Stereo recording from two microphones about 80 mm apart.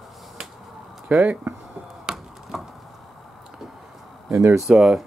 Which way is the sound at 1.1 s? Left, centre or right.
Centre.